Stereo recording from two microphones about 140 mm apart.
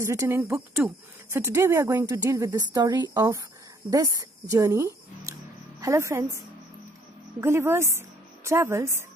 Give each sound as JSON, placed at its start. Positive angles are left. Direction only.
{"t": 0.0, "sound": "a woman's voice", "side_deg": -20}